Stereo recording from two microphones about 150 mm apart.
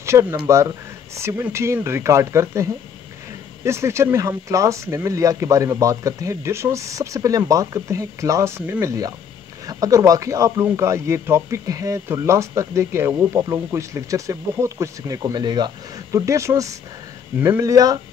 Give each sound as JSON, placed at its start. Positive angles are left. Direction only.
{"t": 0.0, "sound": "speech", "side_deg": -20}